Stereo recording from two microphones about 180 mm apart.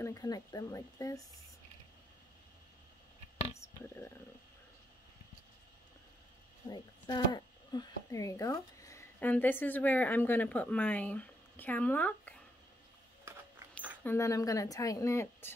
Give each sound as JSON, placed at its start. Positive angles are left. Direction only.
{"t": 0.0, "sound": "speech", "side_deg": 20}
{"t": 6.7, "sound": "speech", "side_deg": 25}
{"t": 14.0, "sound": "a woman's voice", "side_deg": 15}